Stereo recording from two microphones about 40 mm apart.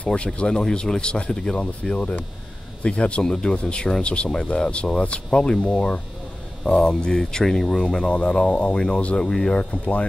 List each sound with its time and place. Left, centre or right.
0.0 s speech: left
1.6 s speech: left
3.3 s speech: centre; by 6.9 s left
6.9 s speech: centre
9.6 s speech: left